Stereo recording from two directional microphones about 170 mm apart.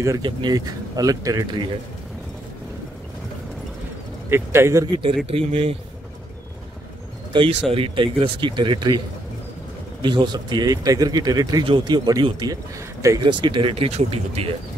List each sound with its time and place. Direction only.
0.0 s speech: 25° right (ahead or behind)
4.3 s speech: 15° right (ahead or behind)
5.3 s speech: 35° right (ahead or behind)
7.7 s speech: 30° right (ahead or behind)
10.0 s speech: 25° right (ahead or behind)